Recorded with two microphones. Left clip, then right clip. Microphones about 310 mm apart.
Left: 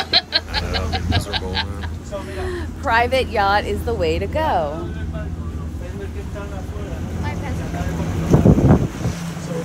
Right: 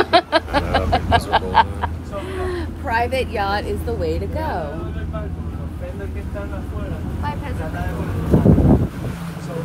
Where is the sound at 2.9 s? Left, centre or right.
Centre.